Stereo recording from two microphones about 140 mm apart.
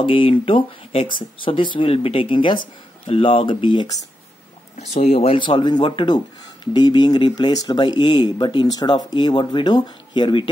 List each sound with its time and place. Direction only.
0.0 s speech: 40° left (ahead or behind)
4.7 s speech: 55° left (ahead or behind); by 10.5 s 35° left (ahead or behind)